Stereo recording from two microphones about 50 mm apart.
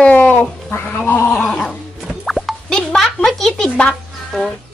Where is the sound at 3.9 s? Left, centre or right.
Centre.